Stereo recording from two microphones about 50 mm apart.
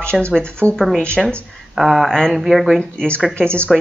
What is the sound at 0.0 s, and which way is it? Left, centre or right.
Speech, left.